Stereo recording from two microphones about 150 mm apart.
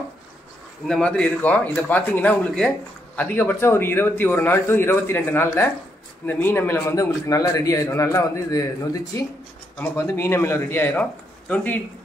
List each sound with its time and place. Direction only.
0.8 s a man's voice: 5° left (ahead or behind)